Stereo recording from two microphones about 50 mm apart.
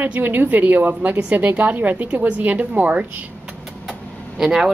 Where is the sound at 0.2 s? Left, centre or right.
Right.